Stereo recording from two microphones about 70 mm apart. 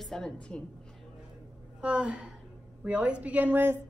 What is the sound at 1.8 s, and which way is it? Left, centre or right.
A woman's voice, centre.